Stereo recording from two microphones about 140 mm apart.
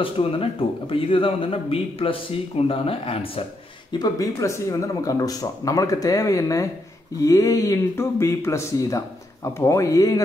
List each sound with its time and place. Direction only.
0.0 s speech: 40° left (ahead or behind)
4.0 s speech: 25° left (ahead or behind)